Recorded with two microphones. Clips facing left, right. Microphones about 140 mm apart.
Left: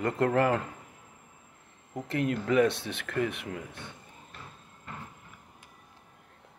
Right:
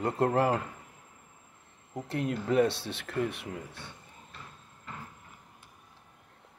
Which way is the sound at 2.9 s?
60° left (ahead or behind).